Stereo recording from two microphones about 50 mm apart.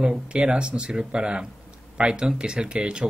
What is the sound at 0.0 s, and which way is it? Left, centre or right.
Speech, centre.